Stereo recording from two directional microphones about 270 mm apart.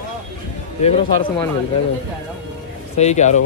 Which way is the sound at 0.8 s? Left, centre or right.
Left.